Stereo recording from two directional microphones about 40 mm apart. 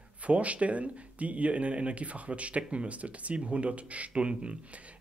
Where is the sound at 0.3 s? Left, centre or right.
Right.